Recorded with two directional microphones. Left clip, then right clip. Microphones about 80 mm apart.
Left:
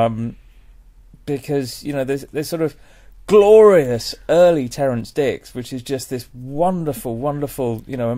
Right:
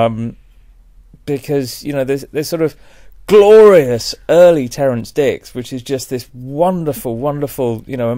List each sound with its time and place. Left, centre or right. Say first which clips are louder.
0.0 s speech: right 3 dB; right